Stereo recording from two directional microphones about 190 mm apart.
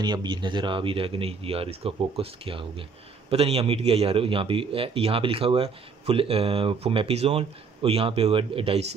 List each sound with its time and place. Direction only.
0.0 s a man's voice: 25° right (ahead or behind)